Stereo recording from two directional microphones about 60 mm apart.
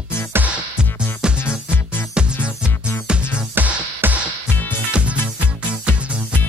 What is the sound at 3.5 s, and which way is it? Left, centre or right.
Music, right.